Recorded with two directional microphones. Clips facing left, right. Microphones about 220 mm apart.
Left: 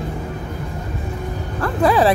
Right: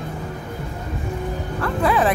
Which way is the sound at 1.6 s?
35° left (ahead or behind).